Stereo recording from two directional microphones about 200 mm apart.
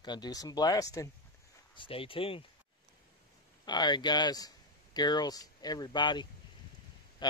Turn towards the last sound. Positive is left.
turn(degrees=20)  # may be behind; listen again after turning